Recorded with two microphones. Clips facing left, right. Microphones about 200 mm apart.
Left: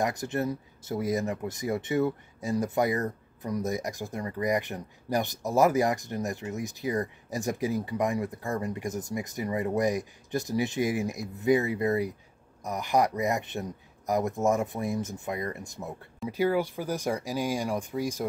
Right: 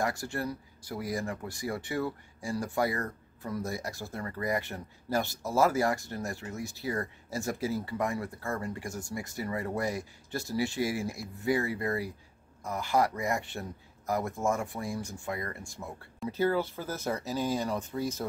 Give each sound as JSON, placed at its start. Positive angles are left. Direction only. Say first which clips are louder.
{"t": 0.0, "sound": "speech", "louder": "left 4 dB", "side_deg": 20}